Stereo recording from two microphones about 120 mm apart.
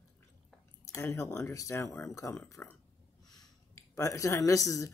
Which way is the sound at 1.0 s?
20° left (ahead or behind).